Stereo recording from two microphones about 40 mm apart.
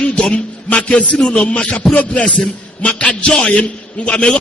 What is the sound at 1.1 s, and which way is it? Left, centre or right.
Speech, left.